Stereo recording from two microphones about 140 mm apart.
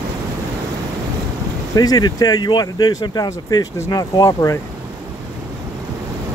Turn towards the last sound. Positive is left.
turn(degrees=25)  # may be behind; listen again after turning